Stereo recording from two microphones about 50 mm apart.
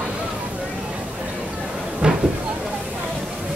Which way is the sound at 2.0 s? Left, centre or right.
Centre.